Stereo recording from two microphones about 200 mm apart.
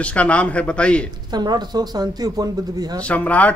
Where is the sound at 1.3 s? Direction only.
20° right (ahead or behind).